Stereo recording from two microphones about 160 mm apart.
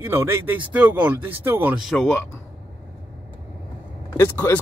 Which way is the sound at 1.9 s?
Centre (ahead or behind).